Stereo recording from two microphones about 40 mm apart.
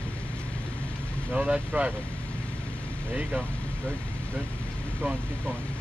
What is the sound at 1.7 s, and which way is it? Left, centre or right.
Speech, right.